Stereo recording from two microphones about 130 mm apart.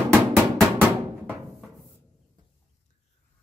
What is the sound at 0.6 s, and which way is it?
Drum, 10° right (ahead or behind).